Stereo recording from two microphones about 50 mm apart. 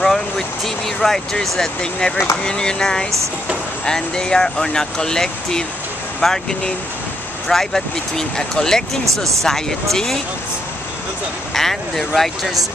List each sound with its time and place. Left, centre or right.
0.0 s vehicle: centre
1.8 s speech: centre
7.4 s speech: centre
11.5 s speech: centre